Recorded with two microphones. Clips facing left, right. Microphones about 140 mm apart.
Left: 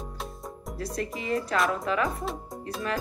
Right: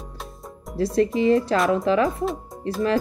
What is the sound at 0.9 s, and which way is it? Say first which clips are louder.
Speech: right 12 dB; 25° right (ahead or behind).